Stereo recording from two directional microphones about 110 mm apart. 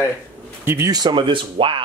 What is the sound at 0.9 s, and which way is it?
Speech, 45° right (ahead or behind).